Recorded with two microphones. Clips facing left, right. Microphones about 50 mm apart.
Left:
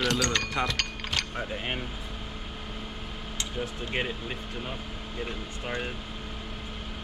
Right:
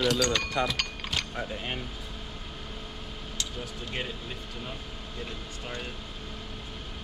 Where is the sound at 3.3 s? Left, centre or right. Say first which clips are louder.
Left 4 dB; left.